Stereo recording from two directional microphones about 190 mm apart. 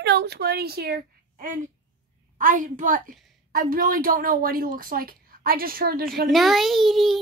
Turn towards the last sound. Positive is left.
turn(degrees=0)  # may be behind; listen again after turning